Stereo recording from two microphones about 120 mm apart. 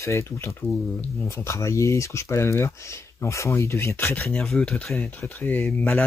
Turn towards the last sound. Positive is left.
turn(degrees=10)  # may be behind; listen again after turning